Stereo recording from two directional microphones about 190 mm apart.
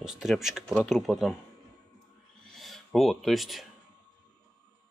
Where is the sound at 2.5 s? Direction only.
Centre (ahead or behind).